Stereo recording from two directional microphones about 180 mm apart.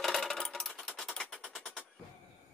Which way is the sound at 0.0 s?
Centre (ahead or behind).